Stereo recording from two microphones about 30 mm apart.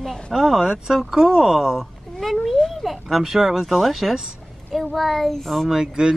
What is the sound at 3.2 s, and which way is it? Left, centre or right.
Speech, centre.